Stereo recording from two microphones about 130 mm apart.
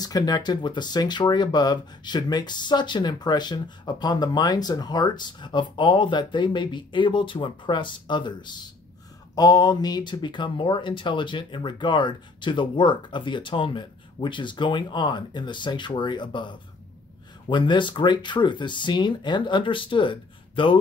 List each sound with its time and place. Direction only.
0.0 s speech: 30° left (ahead or behind)